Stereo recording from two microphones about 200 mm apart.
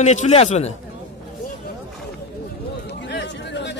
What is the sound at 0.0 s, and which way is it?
Speech, 35° left (ahead or behind).